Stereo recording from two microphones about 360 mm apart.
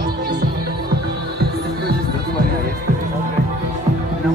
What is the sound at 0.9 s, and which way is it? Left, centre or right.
Music, right.